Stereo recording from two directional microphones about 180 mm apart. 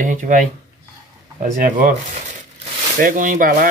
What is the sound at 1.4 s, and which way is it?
Speech, 45° right (ahead or behind).